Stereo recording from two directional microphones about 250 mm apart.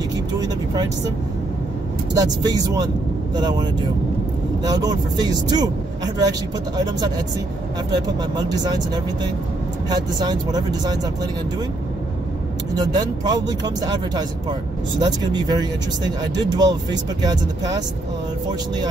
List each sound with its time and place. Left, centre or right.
2.1 s speech: centre
4.6 s speech: centre
7.9 s speech: centre
12.7 s speech: centre